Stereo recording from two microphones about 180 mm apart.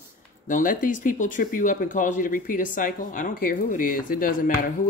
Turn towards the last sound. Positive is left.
turn(degrees=50)  # may be behind; listen again after turning